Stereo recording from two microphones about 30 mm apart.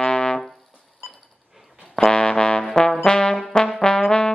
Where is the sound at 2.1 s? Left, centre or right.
Left.